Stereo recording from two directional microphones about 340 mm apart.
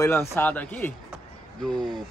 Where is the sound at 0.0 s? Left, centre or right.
Centre.